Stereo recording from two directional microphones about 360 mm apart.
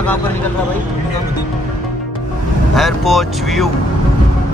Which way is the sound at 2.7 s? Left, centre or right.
Centre.